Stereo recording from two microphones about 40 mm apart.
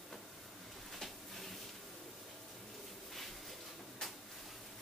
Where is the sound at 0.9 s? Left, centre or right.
Centre.